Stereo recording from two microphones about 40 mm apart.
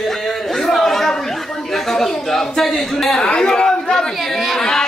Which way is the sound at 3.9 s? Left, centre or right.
Centre.